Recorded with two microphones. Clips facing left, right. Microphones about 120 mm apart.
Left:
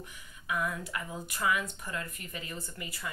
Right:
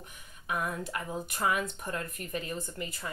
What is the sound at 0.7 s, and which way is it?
A woman's voice, 35° right (ahead or behind).